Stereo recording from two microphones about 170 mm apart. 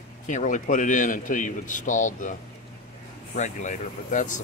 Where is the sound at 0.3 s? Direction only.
50° left (ahead or behind).